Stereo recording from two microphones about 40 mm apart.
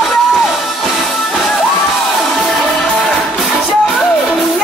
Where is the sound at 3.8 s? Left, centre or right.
Centre.